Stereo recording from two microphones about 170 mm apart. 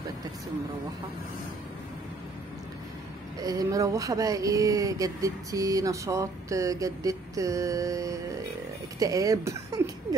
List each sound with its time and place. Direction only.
3.3 s speech: 20° right (ahead or behind)